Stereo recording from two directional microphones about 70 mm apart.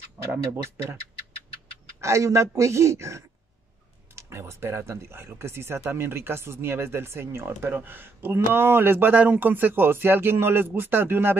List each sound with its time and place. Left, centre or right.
0.6 s speech: right
2.0 s speech: right